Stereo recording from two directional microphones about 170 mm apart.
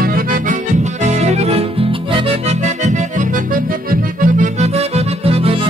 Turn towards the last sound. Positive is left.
turn(degrees=-35)  # may be behind; listen again after turning